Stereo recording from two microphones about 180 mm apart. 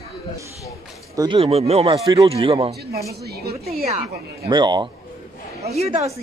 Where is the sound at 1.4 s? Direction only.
35° right (ahead or behind).